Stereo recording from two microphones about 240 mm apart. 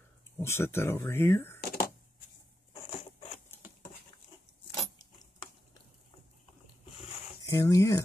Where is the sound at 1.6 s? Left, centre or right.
Left.